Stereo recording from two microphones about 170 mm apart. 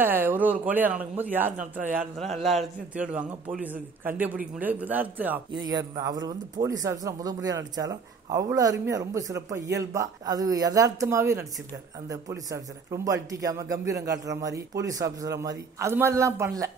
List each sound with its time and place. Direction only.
0.0 s a man's voice: 10° right (ahead or behind)
5.5 s speech: 25° right (ahead or behind)